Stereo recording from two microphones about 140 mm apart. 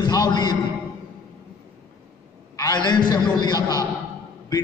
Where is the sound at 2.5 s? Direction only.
30° left (ahead or behind).